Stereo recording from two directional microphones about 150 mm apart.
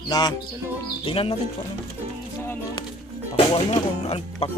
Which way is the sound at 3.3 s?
35° left (ahead or behind).